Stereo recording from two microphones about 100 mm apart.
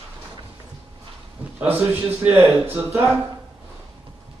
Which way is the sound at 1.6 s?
20° right (ahead or behind).